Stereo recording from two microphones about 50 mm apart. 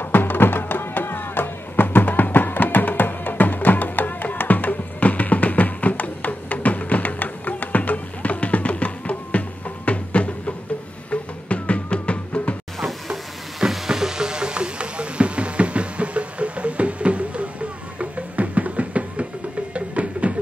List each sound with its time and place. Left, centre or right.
0.0 s music: left
12.8 s a sound: centre; by 17.5 s right
17.9 s music: right